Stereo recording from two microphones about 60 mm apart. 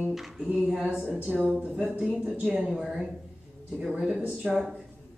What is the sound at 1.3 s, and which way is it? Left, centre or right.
A woman's voice, centre.